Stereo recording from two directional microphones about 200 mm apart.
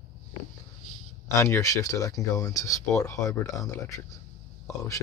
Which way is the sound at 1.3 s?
15° left (ahead or behind).